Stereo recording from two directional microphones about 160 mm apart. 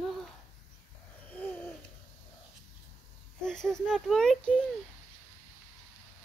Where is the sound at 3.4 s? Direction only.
5° left (ahead or behind).